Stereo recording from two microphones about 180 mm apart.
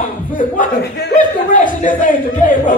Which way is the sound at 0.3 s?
50° left (ahead or behind).